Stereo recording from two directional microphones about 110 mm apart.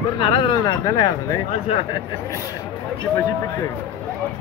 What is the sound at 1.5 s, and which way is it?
Speech, 65° left (ahead or behind).